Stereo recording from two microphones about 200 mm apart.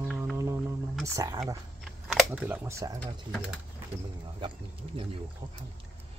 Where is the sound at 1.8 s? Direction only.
5° right (ahead or behind).